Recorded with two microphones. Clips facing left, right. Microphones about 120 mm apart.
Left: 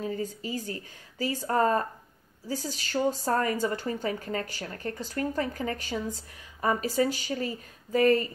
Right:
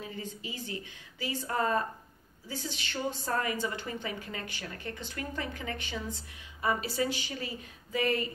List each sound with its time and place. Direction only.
0.0 s a woman's voice: 40° left (ahead or behind)